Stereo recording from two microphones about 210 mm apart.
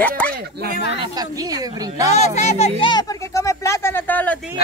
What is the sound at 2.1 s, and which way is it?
A man's voice, 30° left (ahead or behind).